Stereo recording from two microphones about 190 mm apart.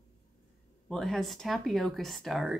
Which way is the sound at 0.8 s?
Centre (ahead or behind).